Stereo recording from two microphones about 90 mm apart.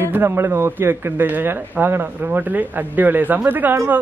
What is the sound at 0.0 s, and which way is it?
A man's voice, 25° right (ahead or behind).